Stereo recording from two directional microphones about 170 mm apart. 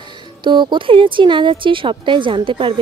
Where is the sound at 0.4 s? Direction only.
25° right (ahead or behind).